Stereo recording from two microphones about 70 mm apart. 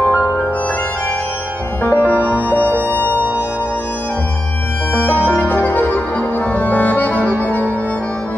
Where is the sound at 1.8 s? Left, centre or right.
Left.